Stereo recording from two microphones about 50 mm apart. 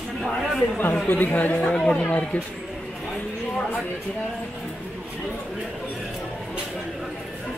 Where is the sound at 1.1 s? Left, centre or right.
Left.